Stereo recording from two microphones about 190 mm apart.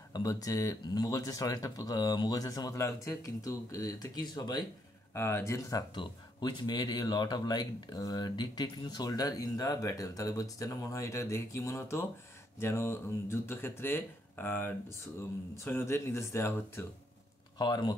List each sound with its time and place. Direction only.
0.1 s speech: 20° left (ahead or behind)